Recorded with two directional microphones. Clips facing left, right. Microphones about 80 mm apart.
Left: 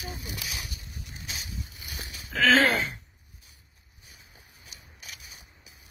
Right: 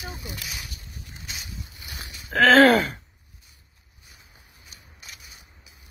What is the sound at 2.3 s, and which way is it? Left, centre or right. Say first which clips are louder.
Throat clearing: right 6 dB; right.